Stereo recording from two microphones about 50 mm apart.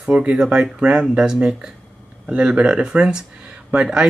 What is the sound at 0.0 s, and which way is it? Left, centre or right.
Speech, centre.